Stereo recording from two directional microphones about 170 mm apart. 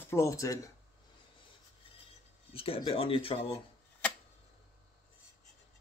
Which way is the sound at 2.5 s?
35° left (ahead or behind).